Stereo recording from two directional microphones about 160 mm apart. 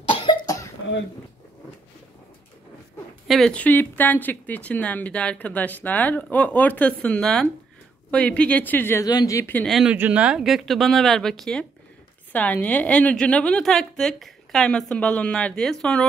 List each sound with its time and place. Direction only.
0.2 s cough: 25° left (ahead or behind)
3.3 s speech: centre (ahead or behind); by 9.6 s 20° left (ahead or behind)
9.6 s a woman's voice: centre (ahead or behind)